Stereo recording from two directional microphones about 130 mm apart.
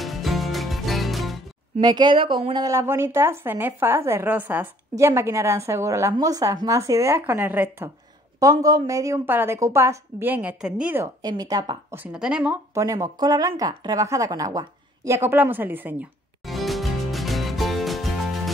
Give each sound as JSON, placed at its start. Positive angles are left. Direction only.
{"t": 0.0, "sound": "music", "side_deg": 0}
{"t": 1.8, "sound": "speech", "side_deg": -35}
{"t": 2.7, "sound": "a woman's voice", "side_deg": -20}
{"t": 8.4, "sound": "speech", "side_deg": -25}
{"t": 11.2, "sound": "speech", "side_deg": -30}
{"t": 11.9, "sound": "a woman's voice", "side_deg": -10}
{"t": 12.7, "sound": "speech", "side_deg": -25}
{"t": 16.4, "sound": "music", "side_deg": 0}